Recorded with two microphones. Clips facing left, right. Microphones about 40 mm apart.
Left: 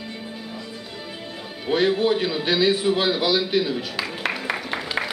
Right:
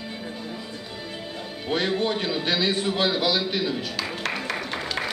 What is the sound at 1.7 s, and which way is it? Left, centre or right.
A man's voice, centre.